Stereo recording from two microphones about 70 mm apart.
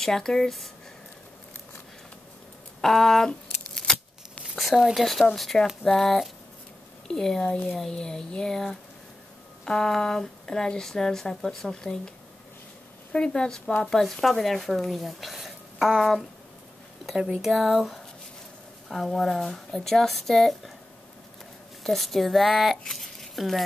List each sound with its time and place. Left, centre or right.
0.0 s a woman's voice: centre
2.8 s scissors: centre
4.6 s a woman's voice: centre
7.4 s speech: centre
7.7 s a woman's voice: centre
13.1 s speech: centre
21.8 s speech: centre